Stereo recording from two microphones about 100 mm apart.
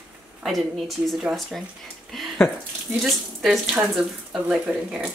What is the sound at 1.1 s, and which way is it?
Speech, centre (ahead or behind).